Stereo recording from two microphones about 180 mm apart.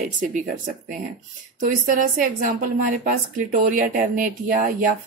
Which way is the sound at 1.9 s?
50° right (ahead or behind).